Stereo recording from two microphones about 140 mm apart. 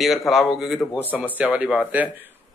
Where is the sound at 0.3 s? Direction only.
Centre (ahead or behind).